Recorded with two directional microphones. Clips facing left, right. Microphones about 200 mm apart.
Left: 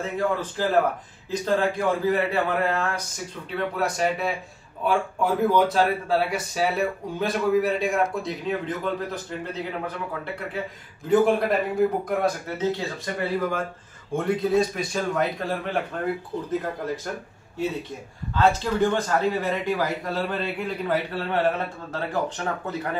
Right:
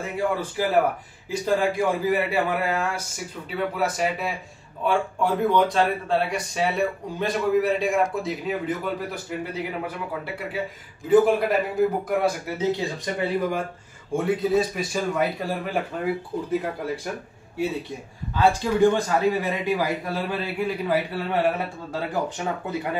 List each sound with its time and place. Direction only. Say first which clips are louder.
0.0 s a man's voice: even; 10° right (ahead or behind)
14.1 s a man's voice: even; 5° right (ahead or behind)
18.3 s a man's voice: right 1 dB; 15° right (ahead or behind)